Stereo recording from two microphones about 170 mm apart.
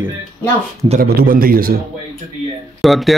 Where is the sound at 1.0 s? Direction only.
60° right (ahead or behind).